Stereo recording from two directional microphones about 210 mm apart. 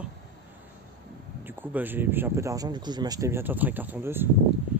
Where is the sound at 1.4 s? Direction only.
10° right (ahead or behind).